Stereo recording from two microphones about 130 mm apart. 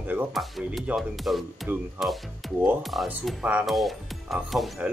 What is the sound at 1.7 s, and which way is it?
Speech, 15° right (ahead or behind).